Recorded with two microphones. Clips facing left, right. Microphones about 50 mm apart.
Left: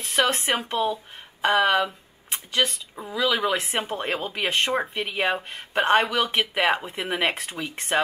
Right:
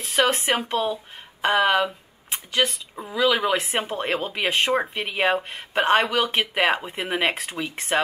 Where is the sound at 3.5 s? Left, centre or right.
Right.